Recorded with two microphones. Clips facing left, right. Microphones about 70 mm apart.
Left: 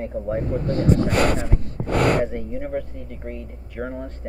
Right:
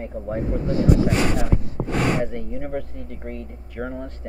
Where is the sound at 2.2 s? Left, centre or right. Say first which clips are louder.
Left 2 dB; centre.